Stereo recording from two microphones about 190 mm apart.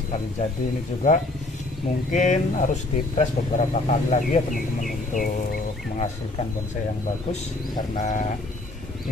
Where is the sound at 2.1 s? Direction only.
40° left (ahead or behind).